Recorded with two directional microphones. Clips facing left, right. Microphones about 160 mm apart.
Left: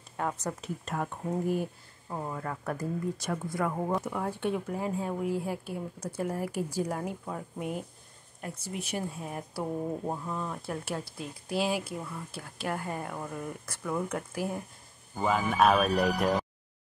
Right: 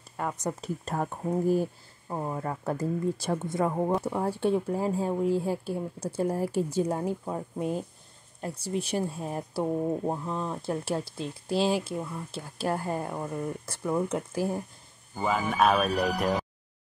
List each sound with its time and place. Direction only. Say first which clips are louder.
0.2 s speech: even; 5° right (ahead or behind)
0.6 s speech: right 3 dB; 35° right (ahead or behind)
2.0 s speech: right 4 dB; 20° right (ahead or behind)
4.0 s speech: right 4 dB; 30° right (ahead or behind)
15.1 s speech: even; centre (ahead or behind)